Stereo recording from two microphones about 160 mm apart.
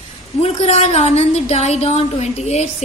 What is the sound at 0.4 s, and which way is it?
A woman's voice, 40° left (ahead or behind).